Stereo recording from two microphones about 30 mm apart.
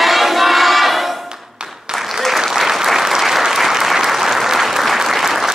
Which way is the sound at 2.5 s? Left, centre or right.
Centre.